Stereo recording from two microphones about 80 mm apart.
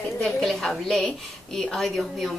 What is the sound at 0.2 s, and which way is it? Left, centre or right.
A woman's voice, centre.